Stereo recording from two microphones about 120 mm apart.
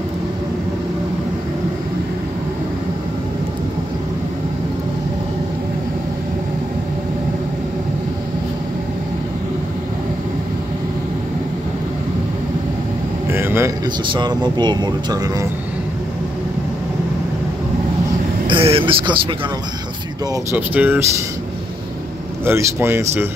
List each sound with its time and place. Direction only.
13.3 s a sound: 20° right (ahead or behind)
14.1 s speech: 35° right (ahead or behind)
18.5 s speech: 50° right (ahead or behind)
20.5 s speech: 15° right (ahead or behind)
22.4 s speech: 20° right (ahead or behind)